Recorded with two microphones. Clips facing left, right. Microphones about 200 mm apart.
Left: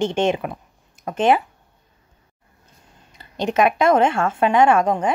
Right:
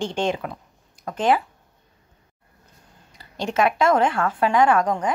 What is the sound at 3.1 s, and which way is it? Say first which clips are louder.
A woman's voice: left 3 dB; 20° left (ahead or behind).